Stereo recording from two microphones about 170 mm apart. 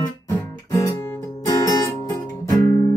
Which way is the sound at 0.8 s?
20° left (ahead or behind).